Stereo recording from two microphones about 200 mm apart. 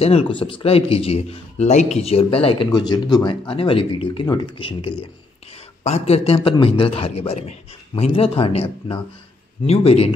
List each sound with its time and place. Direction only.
0.0 s a man's voice: 30° left (ahead or behind)